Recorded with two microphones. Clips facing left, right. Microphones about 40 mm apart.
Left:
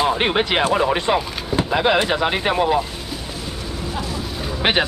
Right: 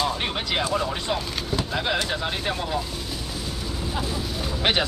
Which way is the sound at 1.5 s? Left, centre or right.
Left.